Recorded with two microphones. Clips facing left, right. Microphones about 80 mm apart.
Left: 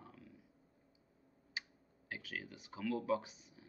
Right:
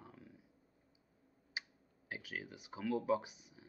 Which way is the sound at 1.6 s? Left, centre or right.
Centre.